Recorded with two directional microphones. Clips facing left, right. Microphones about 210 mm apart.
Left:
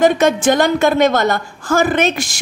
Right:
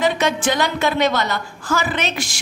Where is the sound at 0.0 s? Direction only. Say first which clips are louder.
Left 6 dB; 50° left (ahead or behind).